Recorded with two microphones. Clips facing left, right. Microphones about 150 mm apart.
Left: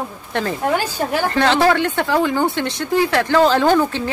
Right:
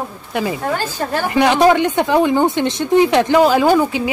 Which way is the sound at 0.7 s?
15° left (ahead or behind).